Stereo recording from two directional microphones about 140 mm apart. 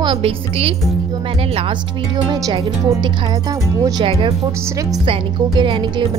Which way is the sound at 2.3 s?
30° right (ahead or behind).